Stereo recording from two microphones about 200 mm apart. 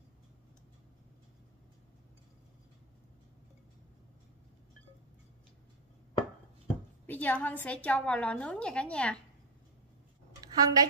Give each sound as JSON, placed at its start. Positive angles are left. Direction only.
{"t": 7.1, "sound": "a woman's voice", "side_deg": 10}
{"t": 10.4, "sound": "a woman's voice", "side_deg": -20}